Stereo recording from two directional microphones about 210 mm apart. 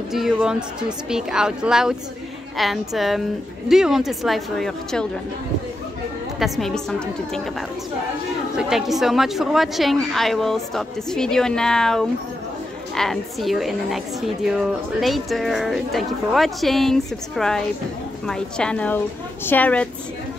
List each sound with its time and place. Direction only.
0.1 s a woman's voice: centre (ahead or behind)
6.4 s a woman's voice: centre (ahead or behind)
8.5 s a woman's voice: centre (ahead or behind)